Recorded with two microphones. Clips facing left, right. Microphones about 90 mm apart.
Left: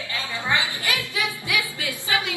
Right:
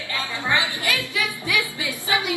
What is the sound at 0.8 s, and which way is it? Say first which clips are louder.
Music: right 1 dB; 20° left (ahead or behind).